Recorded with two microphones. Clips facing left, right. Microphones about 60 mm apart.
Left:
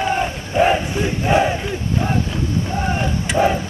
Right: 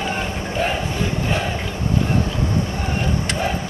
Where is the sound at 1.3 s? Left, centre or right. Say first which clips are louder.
Left 7 dB; centre.